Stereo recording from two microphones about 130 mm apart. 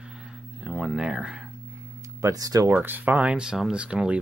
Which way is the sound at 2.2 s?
30° right (ahead or behind).